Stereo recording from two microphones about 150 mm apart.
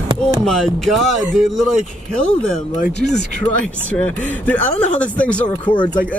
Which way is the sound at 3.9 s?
10° left (ahead or behind).